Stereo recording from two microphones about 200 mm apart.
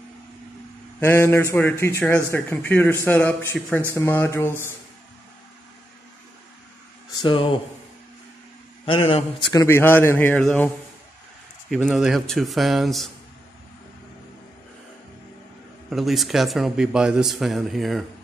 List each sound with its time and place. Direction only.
0.9 s a man's voice: 10° left (ahead or behind)
7.2 s speech: 25° left (ahead or behind)
8.8 s speech: 25° left (ahead or behind)
9.5 s a man's voice: 15° left (ahead or behind)
11.7 s a man's voice: centre (ahead or behind)
15.9 s a man's voice: centre (ahead or behind)